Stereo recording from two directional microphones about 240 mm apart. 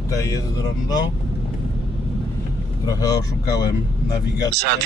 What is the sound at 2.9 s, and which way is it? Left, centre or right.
Speech, centre.